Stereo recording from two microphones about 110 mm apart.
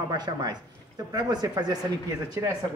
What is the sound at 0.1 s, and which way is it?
Speech, 40° right (ahead or behind).